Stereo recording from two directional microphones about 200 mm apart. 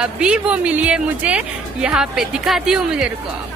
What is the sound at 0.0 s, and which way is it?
A woman's voice, 5° right (ahead or behind).